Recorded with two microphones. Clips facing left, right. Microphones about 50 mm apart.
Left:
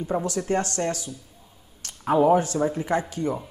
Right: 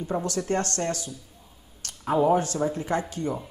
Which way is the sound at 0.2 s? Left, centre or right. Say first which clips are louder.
Left 2 dB; centre.